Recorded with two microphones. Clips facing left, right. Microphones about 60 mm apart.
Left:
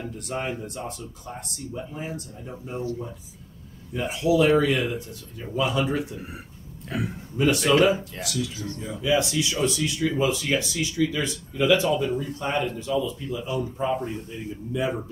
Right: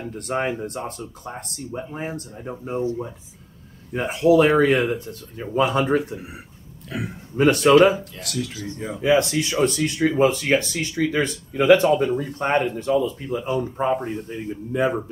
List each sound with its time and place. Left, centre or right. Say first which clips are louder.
0.1 s speech: right 8 dB; right
3.9 s speech: right 6 dB; right
7.3 s speech: right 6 dB; right